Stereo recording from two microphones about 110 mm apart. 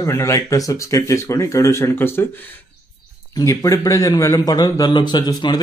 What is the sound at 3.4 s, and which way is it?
A man's voice, 30° left (ahead or behind).